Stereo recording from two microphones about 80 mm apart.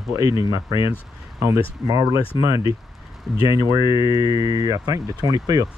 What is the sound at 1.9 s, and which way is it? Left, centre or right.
Speech, right.